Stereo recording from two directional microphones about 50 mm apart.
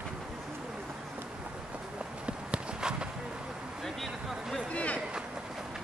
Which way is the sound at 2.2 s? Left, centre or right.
Centre.